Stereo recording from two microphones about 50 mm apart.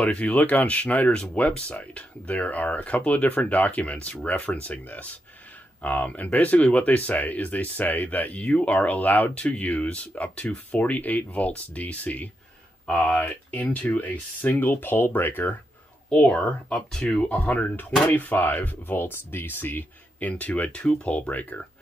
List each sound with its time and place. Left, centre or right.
0.0 s speech: left
9.3 s speech: centre
10.8 s speech: left
16.3 s speech: left
16.9 s speech: centre
17.3 s speech: left